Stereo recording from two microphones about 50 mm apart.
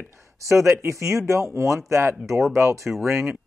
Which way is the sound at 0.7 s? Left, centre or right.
Right.